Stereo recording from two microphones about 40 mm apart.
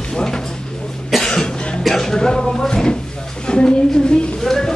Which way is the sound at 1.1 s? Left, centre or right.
Centre.